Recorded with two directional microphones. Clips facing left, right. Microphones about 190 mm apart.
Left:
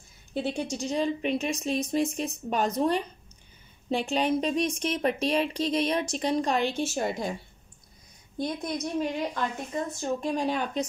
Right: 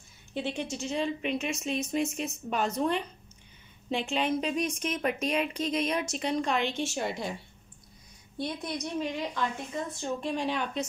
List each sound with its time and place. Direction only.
0.3 s a woman's voice: 40° left (ahead or behind)
8.4 s a woman's voice: 45° left (ahead or behind)